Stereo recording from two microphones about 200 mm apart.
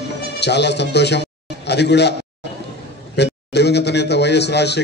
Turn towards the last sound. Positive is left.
turn(degrees=55)  # may be behind; listen again after turning